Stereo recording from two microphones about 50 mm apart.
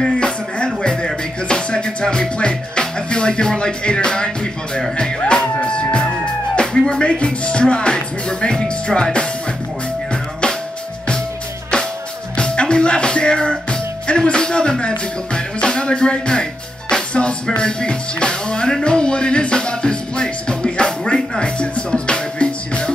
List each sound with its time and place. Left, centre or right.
0.0 s music: centre
12.4 s music: centre